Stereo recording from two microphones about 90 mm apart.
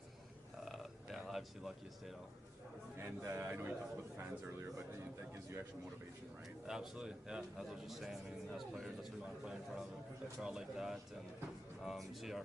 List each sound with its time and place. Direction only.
0.7 s a sound: centre (ahead or behind)
3.0 s a man's voice: 25° right (ahead or behind)
6.7 s a man's voice: 5° right (ahead or behind)